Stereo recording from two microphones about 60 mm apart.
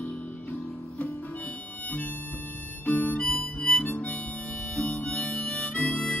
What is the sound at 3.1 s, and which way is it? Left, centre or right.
Harmonica, left.